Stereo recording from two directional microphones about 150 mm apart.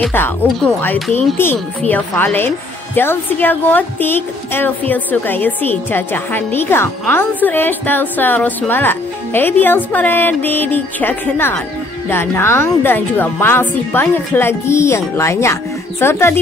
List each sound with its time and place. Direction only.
1.1 s a woman's voice: 15° left (ahead or behind)